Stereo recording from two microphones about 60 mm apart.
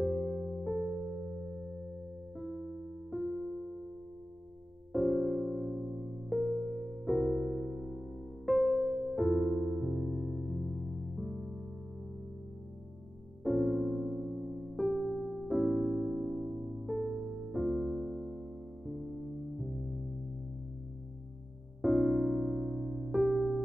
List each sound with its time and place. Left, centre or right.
0.0 s music: centre
2.3 s electric piano: centre
4.9 s music: centre
8.5 s electric piano: centre
13.4 s music: centre
17.1 s music: centre
17.5 s music: centre
21.8 s electric piano: centre